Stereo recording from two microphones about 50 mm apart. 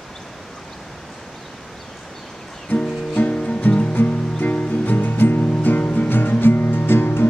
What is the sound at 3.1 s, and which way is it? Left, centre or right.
Music, left.